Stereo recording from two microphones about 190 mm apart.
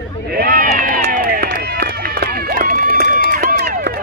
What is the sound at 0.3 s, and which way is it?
Run, 50° right (ahead or behind).